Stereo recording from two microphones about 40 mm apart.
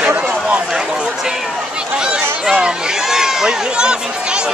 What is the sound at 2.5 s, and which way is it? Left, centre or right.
Speech, centre.